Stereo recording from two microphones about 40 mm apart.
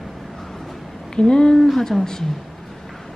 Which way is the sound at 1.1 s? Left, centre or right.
Centre.